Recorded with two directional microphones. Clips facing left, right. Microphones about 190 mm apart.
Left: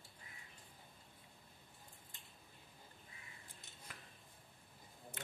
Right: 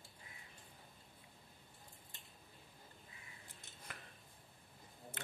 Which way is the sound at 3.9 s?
65° right (ahead or behind).